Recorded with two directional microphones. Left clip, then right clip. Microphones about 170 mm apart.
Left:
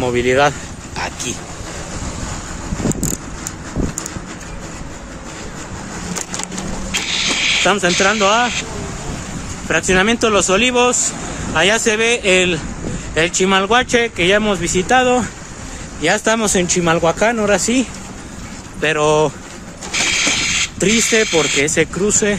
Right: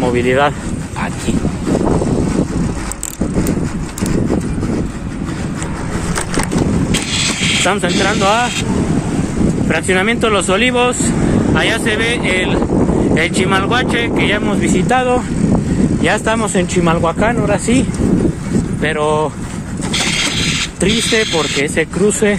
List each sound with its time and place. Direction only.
0.0 s speech: 30° left (ahead or behind)
6.9 s vehicle: 70° right (ahead or behind)
7.6 s speech: centre (ahead or behind)
9.7 s speech: 5° left (ahead or behind)
19.9 s a sound: 50° right (ahead or behind)
20.8 s speech: 15° left (ahead or behind)